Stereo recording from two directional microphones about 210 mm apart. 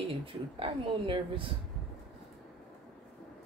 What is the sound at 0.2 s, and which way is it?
Speech, 25° right (ahead or behind).